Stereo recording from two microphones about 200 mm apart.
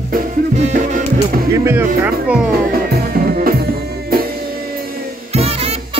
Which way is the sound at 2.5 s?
50° right (ahead or behind).